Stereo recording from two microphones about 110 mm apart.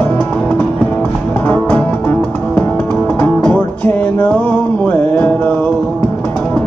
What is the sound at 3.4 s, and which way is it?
Music, 15° left (ahead or behind).